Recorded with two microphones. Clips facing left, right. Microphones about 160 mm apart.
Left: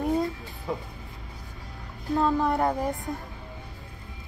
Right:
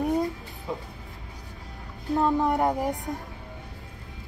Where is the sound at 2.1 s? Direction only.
20° right (ahead or behind).